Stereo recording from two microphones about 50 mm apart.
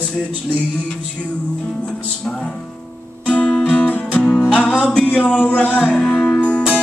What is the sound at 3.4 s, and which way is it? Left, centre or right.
Music, left.